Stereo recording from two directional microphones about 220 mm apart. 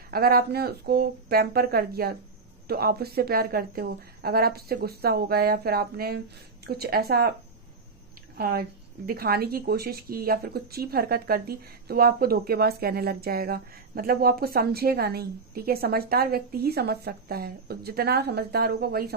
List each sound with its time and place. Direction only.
0.1 s a woman's voice: 45° right (ahead or behind)
8.4 s a woman's voice: 45° right (ahead or behind)